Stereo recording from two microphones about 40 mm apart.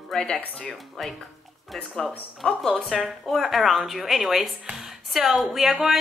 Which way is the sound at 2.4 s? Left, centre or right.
Centre.